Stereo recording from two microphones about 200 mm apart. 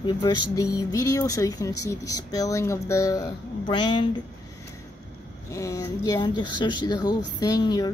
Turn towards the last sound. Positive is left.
turn(degrees=20)  # may be behind; listen again after turning